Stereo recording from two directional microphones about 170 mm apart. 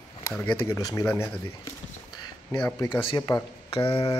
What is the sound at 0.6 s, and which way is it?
Speech, 20° left (ahead or behind).